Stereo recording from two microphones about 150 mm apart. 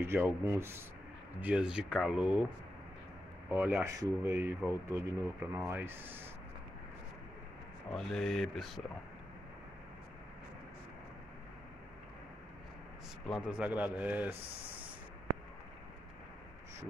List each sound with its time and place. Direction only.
0.0 s speech: 15° right (ahead or behind)
3.4 s speech: 10° right (ahead or behind)
7.9 s speech: 5° left (ahead or behind)
13.5 s speech: 10° right (ahead or behind)
14.3 s speech: 40° right (ahead or behind)